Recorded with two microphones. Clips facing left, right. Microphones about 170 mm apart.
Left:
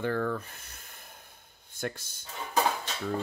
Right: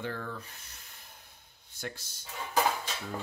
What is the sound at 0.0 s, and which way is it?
Speech, 55° left (ahead or behind).